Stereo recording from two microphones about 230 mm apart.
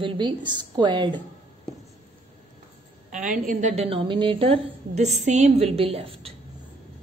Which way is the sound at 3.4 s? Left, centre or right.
Right.